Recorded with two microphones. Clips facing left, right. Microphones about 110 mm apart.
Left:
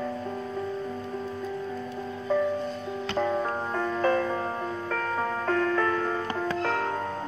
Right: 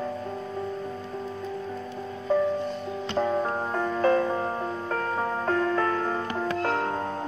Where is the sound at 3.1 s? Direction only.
20° right (ahead or behind).